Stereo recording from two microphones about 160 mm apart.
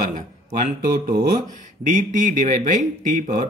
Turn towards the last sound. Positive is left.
turn(degrees=-60)  # may be behind; listen again after turning